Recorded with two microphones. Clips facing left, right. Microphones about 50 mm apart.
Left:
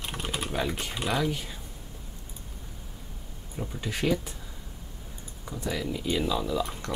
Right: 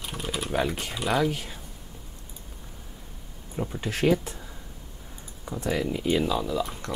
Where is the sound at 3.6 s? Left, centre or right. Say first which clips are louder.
Right 4 dB; centre.